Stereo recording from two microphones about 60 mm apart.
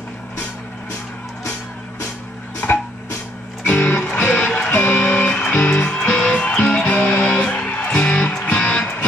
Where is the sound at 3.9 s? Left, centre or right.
Centre.